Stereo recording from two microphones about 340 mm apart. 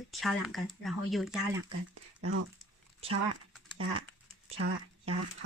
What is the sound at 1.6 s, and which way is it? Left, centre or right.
Speech, right.